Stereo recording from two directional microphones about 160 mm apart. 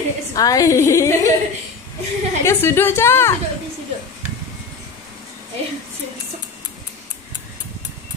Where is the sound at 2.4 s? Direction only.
15° left (ahead or behind).